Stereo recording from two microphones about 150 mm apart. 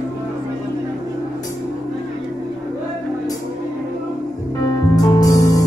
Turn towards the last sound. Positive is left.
turn(degrees=25)  # may be behind; listen again after turning